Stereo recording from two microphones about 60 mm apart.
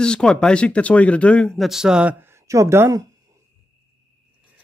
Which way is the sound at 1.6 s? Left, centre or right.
Centre.